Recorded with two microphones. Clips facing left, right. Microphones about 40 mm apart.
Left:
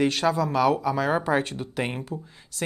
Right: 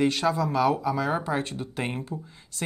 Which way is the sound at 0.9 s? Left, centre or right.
Left.